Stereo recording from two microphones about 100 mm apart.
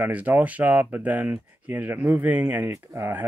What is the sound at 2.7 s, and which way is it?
Speech, 30° right (ahead or behind).